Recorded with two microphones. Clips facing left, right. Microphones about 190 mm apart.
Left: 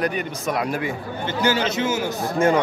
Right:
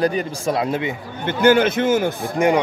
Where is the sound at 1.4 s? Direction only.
55° right (ahead or behind).